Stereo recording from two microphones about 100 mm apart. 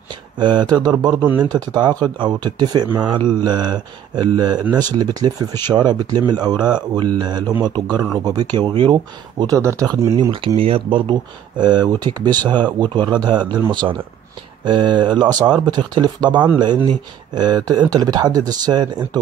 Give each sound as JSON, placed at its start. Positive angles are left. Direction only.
{"t": 0.4, "sound": "speech", "side_deg": -50}
{"t": 9.6, "sound": "speech", "side_deg": -30}
{"t": 10.3, "sound": "speech", "side_deg": -60}